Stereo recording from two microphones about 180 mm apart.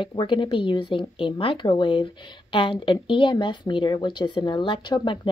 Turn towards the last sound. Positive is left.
turn(degrees=25)  # may be behind; listen again after turning